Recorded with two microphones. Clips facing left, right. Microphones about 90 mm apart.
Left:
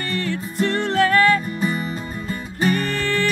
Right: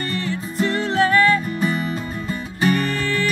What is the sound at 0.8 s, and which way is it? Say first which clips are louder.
Music: even; 55° left (ahead or behind).